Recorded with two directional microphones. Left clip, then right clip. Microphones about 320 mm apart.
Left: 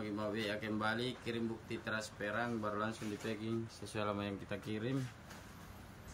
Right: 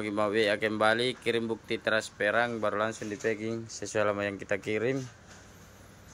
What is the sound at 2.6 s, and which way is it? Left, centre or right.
Speech, right.